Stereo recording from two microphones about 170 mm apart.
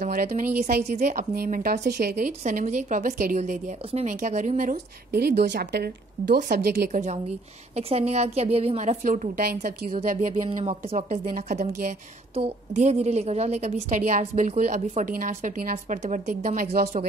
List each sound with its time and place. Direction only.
0.0 s speech: 60° right (ahead or behind)
0.9 s speech: 45° right (ahead or behind); by 6.9 s 70° right (ahead or behind)
6.9 s a woman's voice: 45° right (ahead or behind)
10.6 s a woman's voice: 40° right (ahead or behind)
11.3 s speech: 55° right (ahead or behind)
12.4 s speech: 40° right (ahead or behind); by 16.0 s 60° right (ahead or behind)
16.0 s speech: 45° right (ahead or behind); by 16.9 s 65° right (ahead or behind)